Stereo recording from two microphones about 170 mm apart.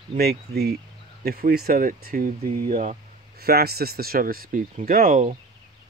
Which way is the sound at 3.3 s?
65° right (ahead or behind).